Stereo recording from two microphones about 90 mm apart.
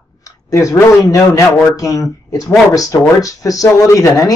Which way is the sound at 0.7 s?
30° left (ahead or behind).